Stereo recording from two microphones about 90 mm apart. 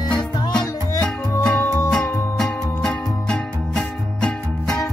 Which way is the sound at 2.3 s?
10° left (ahead or behind).